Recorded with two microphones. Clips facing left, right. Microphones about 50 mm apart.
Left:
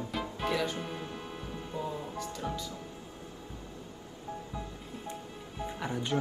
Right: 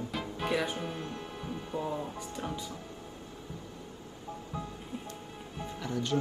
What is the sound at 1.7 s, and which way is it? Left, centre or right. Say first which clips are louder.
Music: right 2 dB; right.